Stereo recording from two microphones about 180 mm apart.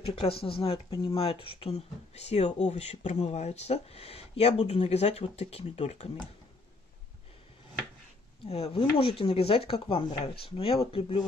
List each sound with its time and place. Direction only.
0.0 s speech: 30° left (ahead or behind)
8.5 s speech: 35° left (ahead or behind)